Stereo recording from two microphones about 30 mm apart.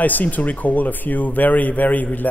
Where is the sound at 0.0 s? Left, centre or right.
Left.